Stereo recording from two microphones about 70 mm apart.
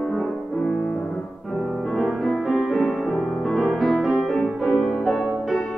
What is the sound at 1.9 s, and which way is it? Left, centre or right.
Music, centre.